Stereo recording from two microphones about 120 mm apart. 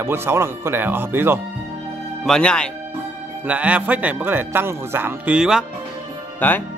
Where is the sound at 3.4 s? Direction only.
10° right (ahead or behind).